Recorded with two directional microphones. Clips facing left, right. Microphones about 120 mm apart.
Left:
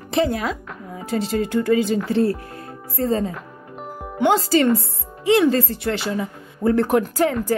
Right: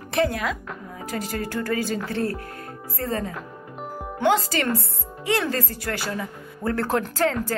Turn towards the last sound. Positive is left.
turn(degrees=10)  # may be behind; listen again after turning